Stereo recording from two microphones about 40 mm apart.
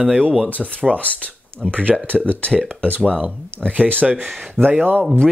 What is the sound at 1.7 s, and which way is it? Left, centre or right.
Speech, right.